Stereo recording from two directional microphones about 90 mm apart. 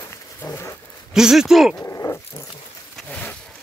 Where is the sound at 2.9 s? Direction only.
15° left (ahead or behind).